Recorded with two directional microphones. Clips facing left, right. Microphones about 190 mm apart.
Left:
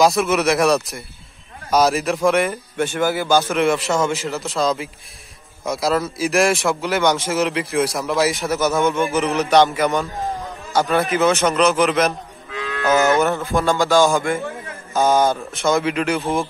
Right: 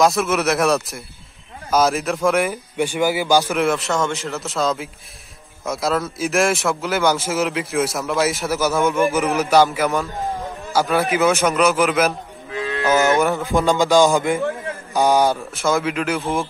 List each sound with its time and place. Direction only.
0.0 s a man's voice: centre (ahead or behind)
3.5 s a man's voice: centre (ahead or behind)
12.9 s music: 10° right (ahead or behind)
15.5 s a man's voice: 5° right (ahead or behind)